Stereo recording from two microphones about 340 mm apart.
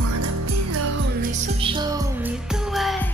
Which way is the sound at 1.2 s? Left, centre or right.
Centre.